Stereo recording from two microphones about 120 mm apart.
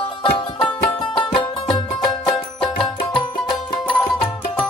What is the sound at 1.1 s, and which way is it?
Music, 45° left (ahead or behind).